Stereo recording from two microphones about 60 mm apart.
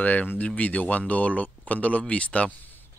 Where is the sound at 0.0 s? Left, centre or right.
Left.